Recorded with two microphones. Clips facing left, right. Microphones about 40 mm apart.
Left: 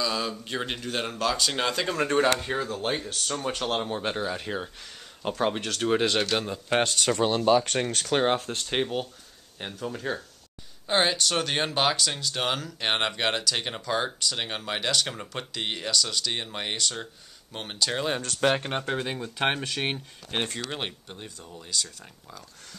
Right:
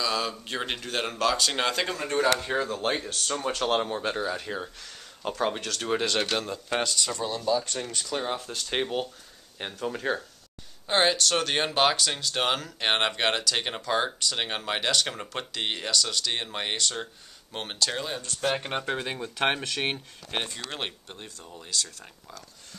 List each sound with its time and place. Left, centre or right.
0.0 s speech: centre
2.2 s speech: left
2.6 s speech: centre
3.9 s speech: centre
6.7 s speech: left
8.6 s speech: centre
9.6 s speech: centre
10.9 s speech: centre
17.7 s speech: centre
18.2 s speech: left
18.6 s speech: centre